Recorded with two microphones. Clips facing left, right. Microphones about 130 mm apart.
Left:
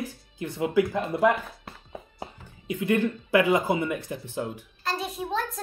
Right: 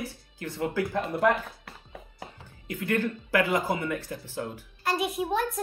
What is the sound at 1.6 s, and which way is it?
Speech, 25° left (ahead or behind).